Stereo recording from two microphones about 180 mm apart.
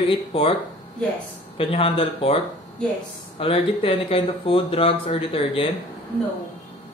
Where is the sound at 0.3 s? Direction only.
30° left (ahead or behind).